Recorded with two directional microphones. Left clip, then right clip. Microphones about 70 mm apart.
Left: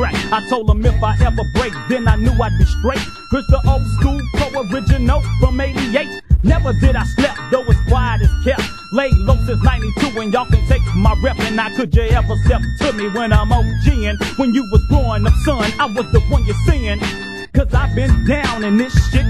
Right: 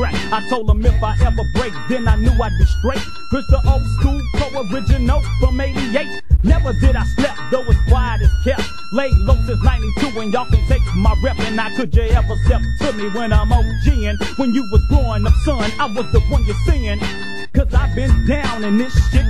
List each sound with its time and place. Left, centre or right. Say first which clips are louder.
0.0 s music: left 2 dB; left